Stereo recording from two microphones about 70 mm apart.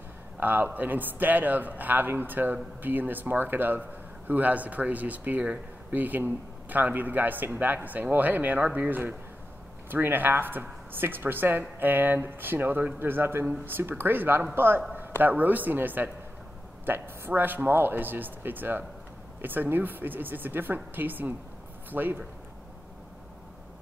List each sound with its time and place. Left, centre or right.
0.4 s speech: right